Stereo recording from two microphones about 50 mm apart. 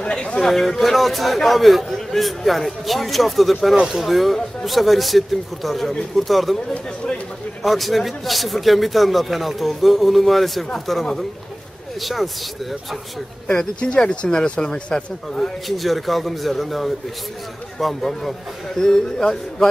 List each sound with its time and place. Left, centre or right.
0.0 s chatter: left
0.4 s speech: centre
7.6 s speech: centre
13.5 s speech: centre
15.4 s speech: centre
18.8 s speech: centre